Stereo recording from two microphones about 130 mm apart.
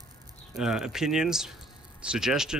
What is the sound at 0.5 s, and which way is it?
Speech, 5° right (ahead or behind).